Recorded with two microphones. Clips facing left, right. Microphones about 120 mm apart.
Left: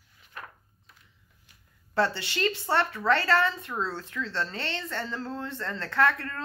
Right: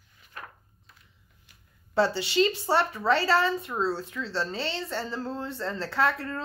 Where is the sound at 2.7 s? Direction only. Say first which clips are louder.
Right 1 dB; 10° right (ahead or behind).